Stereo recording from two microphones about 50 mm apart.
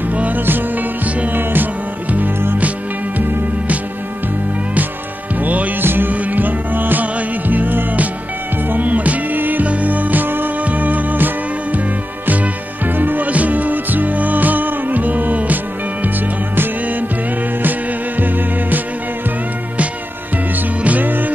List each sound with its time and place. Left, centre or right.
0.1 s music: right
5.4 s music: right
12.9 s music: right
20.8 s music: right